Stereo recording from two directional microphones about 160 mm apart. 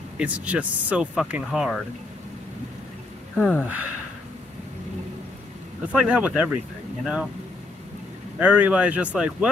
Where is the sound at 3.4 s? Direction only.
10° left (ahead or behind).